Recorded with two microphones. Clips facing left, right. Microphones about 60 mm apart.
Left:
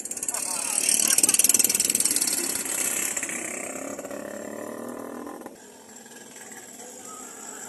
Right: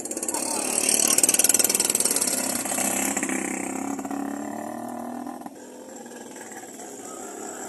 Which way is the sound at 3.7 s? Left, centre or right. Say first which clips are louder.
Right 5 dB; centre.